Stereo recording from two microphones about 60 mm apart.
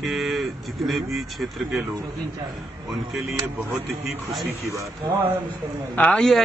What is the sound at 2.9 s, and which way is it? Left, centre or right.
Speech, centre.